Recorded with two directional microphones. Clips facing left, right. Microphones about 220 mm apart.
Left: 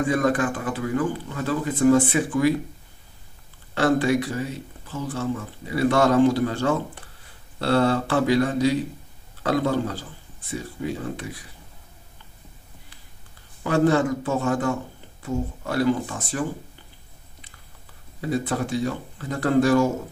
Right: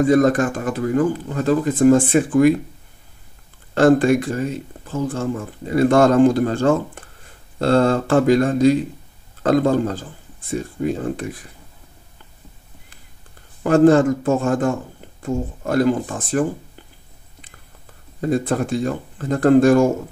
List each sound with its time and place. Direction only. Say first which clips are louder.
0.0 s a man's voice: right 7 dB; 40° right (ahead or behind)
3.7 s a man's voice: right 6 dB; 50° right (ahead or behind)
13.6 s a man's voice: right 7 dB; 45° right (ahead or behind)
18.2 s a man's voice: right 5 dB; 50° right (ahead or behind)